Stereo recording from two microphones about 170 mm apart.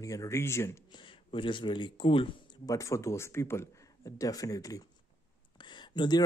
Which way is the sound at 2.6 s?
20° left (ahead or behind).